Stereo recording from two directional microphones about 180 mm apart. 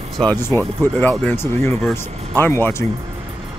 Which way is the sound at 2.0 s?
35° right (ahead or behind).